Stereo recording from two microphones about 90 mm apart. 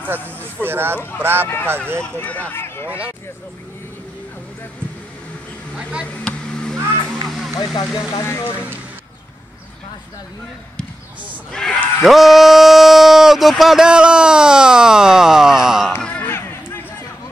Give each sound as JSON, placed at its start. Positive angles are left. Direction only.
{"t": 0.4, "sound": "speech", "side_deg": -25}
{"t": 2.1, "sound": "speech", "side_deg": 15}
{"t": 5.8, "sound": "speech", "side_deg": -10}
{"t": 6.2, "sound": "a sound", "side_deg": 5}
{"t": 7.5, "sound": "speech", "side_deg": 45}
{"t": 8.1, "sound": "speech", "side_deg": 35}
{"t": 11.5, "sound": "speech", "side_deg": 5}
{"t": 16.0, "sound": "a sound", "side_deg": 15}
{"t": 16.3, "sound": "a sound", "side_deg": 25}